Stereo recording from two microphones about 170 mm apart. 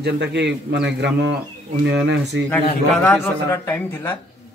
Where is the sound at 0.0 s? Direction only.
85° right.